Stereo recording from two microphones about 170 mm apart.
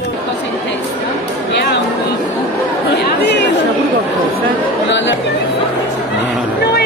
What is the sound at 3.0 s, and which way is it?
Chatter, 85° left.